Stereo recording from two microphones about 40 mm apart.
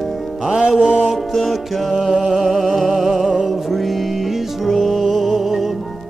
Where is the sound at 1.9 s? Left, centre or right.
Centre.